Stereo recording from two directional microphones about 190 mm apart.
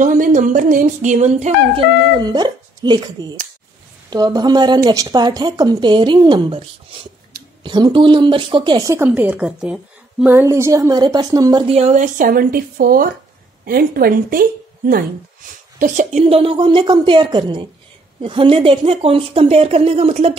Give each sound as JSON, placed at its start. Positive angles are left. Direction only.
{"t": 0.0, "sound": "a sound", "side_deg": -45}
{"t": 4.1, "sound": "a woman's voice", "side_deg": -20}
{"t": 11.7, "sound": "speech", "side_deg": -35}
{"t": 15.8, "sound": "a woman's voice", "side_deg": -40}